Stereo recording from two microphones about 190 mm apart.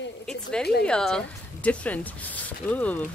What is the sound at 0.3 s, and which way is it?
A woman's voice, 5° left (ahead or behind).